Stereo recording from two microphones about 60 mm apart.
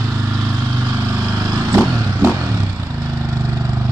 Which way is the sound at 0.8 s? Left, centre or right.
Right.